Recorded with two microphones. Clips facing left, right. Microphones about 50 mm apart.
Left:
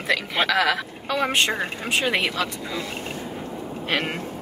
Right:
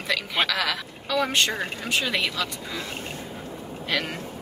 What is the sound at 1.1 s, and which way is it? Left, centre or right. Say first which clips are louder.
Speech: left 2 dB; left.